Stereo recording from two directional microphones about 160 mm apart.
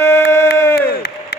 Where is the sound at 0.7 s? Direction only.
90° left.